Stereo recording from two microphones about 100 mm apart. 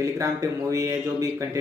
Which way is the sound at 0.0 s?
30° right (ahead or behind).